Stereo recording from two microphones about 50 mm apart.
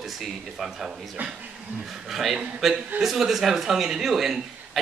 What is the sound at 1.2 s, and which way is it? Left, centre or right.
Speech, right.